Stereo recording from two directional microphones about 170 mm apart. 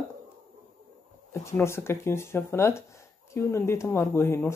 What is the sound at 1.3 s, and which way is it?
Speech, 15° left (ahead or behind).